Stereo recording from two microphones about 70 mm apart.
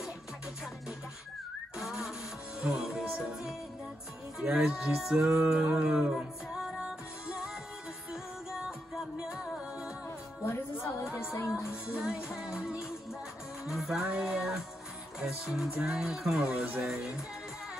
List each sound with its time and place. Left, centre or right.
1.8 s a sound: centre
2.6 s music: centre
4.4 s speech: centre
5.4 s music: centre
10.0 s music: left
12.0 s speech: centre
13.7 s music: centre
14.0 s speech: centre